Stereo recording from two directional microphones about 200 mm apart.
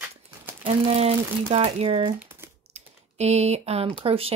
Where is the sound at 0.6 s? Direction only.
30° right (ahead or behind).